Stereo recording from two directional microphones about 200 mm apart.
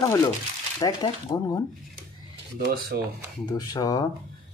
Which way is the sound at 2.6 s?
50° right (ahead or behind).